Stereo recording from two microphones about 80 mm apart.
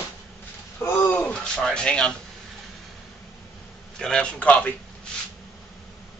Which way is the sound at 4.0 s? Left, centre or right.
Centre.